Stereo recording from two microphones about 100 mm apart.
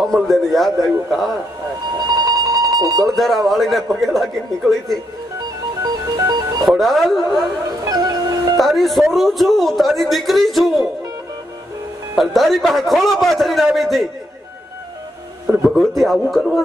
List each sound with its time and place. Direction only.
0.0 s a man's voice: centre (ahead or behind)
2.2 s a sound: 40° right (ahead or behind)
3.0 s a man's voice: centre (ahead or behind)
5.8 s music: 35° right (ahead or behind)
6.7 s a man's voice: centre (ahead or behind)
7.7 s howl: 40° right (ahead or behind)
8.5 s a man's voice: centre (ahead or behind)
12.2 s a man's voice: centre (ahead or behind)
15.7 s a man's voice: centre (ahead or behind)